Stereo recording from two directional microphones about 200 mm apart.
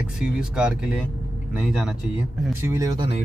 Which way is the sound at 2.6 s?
15° right (ahead or behind).